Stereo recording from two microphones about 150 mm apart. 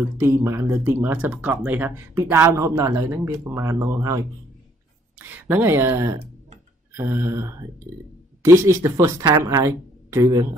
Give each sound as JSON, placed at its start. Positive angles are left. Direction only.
{"t": 0.2, "sound": "speech", "side_deg": -20}
{"t": 5.2, "sound": "speech", "side_deg": -10}